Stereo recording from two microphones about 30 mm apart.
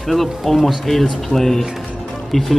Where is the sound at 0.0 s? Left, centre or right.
Centre.